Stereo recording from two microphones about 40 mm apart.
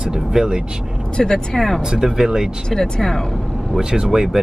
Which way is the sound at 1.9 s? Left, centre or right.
Centre.